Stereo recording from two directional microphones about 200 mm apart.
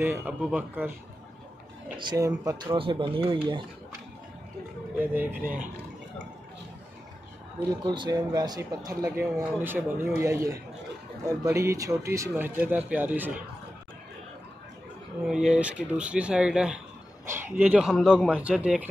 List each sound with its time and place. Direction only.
0.0 s speech: 10° right (ahead or behind)
2.0 s speech: 20° right (ahead or behind)
4.9 s speech: 10° right (ahead or behind)
7.8 s speech: 20° right (ahead or behind)
15.2 s speech: 5° right (ahead or behind)